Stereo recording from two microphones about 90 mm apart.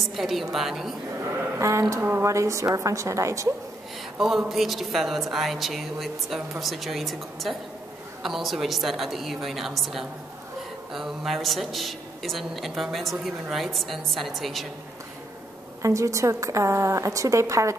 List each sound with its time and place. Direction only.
0.0 s a man's voice: centre (ahead or behind)
1.2 s speech: 25° right (ahead or behind)
2.2 s a woman's voice: 35° right (ahead or behind)
4.2 s a man's voice: 5° right (ahead or behind)
15.8 s a woman's voice: 35° right (ahead or behind)